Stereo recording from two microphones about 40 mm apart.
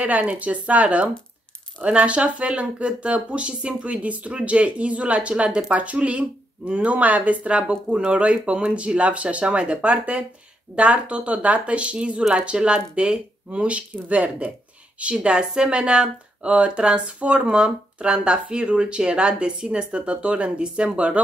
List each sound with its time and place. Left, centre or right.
0.0 s speech: right